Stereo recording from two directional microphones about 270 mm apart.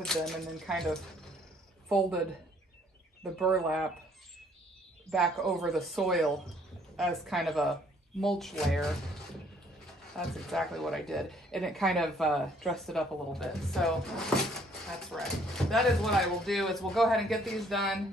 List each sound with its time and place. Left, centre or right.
0.0 s speech: centre
3.3 s speech: centre
5.1 s speech: centre
10.1 s speech: centre